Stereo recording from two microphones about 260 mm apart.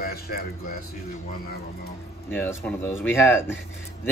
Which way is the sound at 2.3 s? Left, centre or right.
Centre.